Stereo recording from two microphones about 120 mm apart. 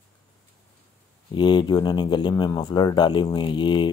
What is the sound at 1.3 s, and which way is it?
Speech, 40° left (ahead or behind).